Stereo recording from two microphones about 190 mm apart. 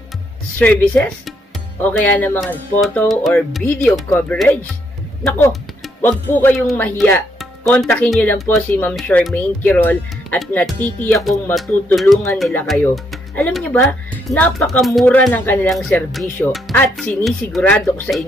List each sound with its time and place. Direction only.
0.6 s speech: 5° left (ahead or behind)